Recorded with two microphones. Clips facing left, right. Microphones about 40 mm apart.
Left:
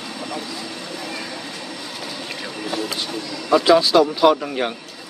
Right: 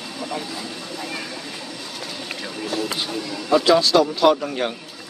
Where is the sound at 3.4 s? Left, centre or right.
Centre.